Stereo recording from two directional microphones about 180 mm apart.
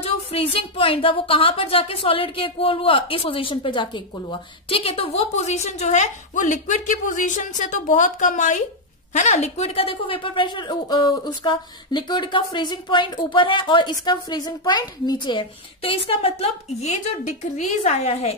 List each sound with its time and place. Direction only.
0.0 s a woman's voice: 30° left (ahead or behind)